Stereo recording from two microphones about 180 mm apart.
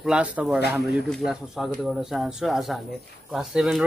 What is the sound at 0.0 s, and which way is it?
Speech, 5° right (ahead or behind).